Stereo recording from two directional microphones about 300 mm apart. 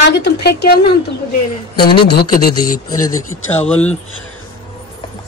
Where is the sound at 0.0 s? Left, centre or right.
Left.